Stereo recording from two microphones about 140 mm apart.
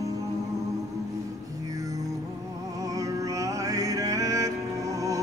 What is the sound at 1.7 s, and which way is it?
Music, 25° right (ahead or behind).